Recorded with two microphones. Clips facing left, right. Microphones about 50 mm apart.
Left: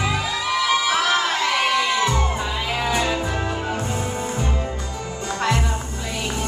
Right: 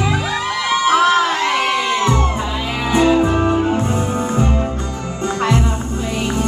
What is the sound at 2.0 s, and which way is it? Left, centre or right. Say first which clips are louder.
Music: right 4 dB; right.